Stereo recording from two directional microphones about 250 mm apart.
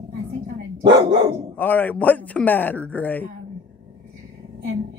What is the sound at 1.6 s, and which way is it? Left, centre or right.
Speech, centre.